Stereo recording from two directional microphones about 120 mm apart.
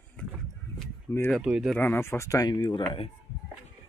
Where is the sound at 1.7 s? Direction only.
15° left (ahead or behind); by 2.8 s 35° left (ahead or behind).